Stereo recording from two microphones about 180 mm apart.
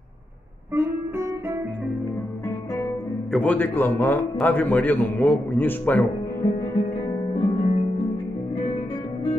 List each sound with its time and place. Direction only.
0.7 s music: 15° right (ahead or behind)
3.3 s a man's voice: 5° left (ahead or behind)
7.3 s music: 30° left (ahead or behind)